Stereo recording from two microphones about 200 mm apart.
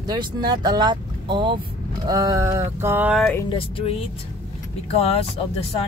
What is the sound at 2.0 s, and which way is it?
Music, 15° right (ahead or behind).